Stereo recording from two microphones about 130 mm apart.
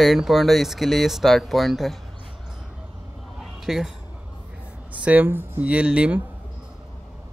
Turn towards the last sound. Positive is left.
turn(degrees=-10)  # may be behind; listen again after turning